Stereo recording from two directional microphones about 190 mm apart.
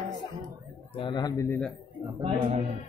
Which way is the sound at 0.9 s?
25° left (ahead or behind).